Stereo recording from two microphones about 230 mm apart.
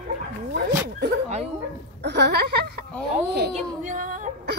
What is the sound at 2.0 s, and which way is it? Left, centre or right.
Speech, right.